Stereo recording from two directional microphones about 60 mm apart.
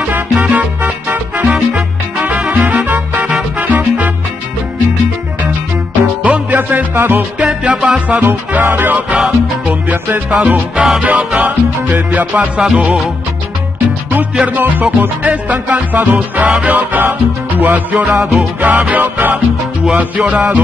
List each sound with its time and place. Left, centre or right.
0.0 s music: right
6.2 s music: right
14.3 s music: right